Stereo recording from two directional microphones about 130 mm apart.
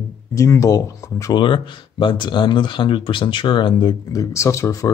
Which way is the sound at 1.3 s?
40° left (ahead or behind).